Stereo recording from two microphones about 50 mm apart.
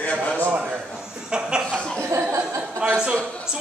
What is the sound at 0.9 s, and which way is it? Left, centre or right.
Chuckle, centre.